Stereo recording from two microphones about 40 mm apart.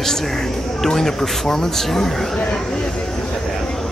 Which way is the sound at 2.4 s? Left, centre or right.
Centre.